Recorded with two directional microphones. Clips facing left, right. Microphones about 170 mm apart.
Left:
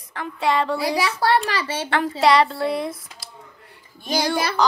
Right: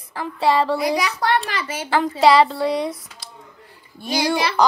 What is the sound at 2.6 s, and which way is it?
Speech, centre (ahead or behind).